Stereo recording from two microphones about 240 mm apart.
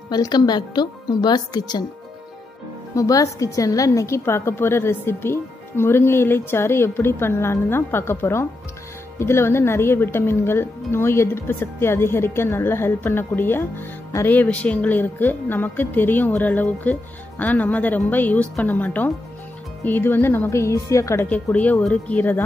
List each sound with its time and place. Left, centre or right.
0.1 s speech: centre
3.0 s speech: centre